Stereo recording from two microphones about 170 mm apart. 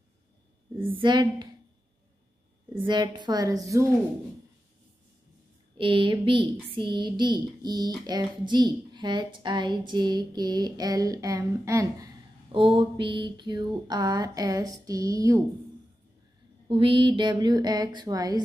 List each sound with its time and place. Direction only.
0.7 s a woman's voice: 30° right (ahead or behind)
2.9 s a woman's voice: 25° right (ahead or behind)
5.8 s a woman's voice: 30° right (ahead or behind)
12.5 s a woman's voice: 30° right (ahead or behind)
16.6 s a woman's voice: 30° right (ahead or behind)